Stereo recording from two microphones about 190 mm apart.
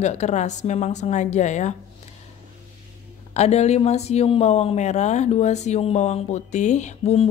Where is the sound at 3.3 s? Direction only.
35° left (ahead or behind).